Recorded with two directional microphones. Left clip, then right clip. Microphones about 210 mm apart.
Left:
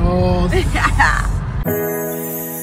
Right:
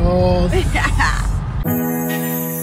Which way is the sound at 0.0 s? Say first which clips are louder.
Right 2 dB; 5° right (ahead or behind).